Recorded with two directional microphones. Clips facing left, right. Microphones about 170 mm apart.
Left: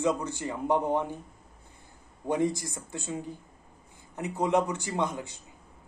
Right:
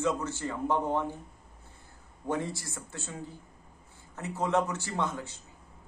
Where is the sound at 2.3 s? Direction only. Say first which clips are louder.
Left 5 dB; 15° left (ahead or behind).